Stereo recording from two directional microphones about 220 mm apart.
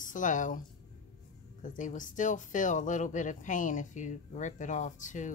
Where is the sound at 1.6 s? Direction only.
35° left (ahead or behind).